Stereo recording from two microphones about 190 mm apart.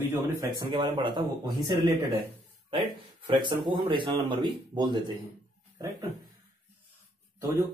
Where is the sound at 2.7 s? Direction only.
25° right (ahead or behind).